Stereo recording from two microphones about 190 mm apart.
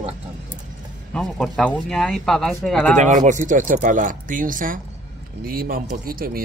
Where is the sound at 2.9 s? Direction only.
40° right (ahead or behind).